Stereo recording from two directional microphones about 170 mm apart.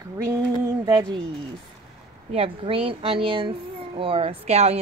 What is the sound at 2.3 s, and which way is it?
Speech, 35° right (ahead or behind).